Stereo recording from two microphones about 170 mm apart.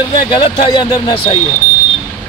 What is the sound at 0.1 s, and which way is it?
Speech, 30° left (ahead or behind).